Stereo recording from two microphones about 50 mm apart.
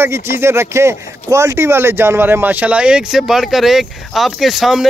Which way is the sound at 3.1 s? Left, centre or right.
Centre.